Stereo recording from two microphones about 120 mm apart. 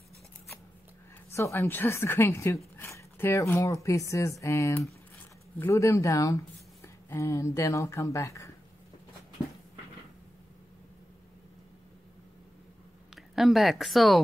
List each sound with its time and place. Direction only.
1.3 s speech: 25° left (ahead or behind)
13.1 s a woman's voice: centre (ahead or behind)